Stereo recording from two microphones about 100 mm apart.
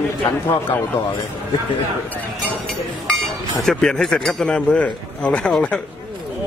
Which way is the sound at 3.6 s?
5° left (ahead or behind).